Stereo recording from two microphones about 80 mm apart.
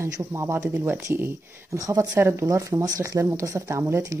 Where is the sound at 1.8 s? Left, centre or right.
Right.